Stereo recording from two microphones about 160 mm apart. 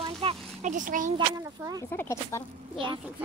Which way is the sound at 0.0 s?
35° right (ahead or behind).